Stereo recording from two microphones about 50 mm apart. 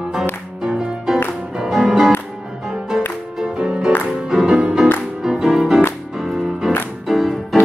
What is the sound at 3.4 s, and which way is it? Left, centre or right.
Music, centre.